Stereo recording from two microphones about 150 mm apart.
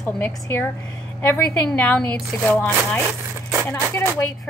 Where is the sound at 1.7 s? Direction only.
10° left (ahead or behind).